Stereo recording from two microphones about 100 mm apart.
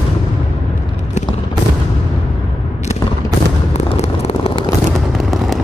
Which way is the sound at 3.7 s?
90° left.